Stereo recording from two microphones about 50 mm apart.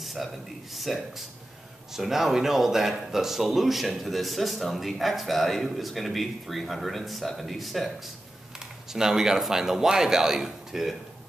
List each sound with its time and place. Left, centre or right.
0.0 s a sound: centre
0.7 s speech: centre
8.9 s a man's voice: centre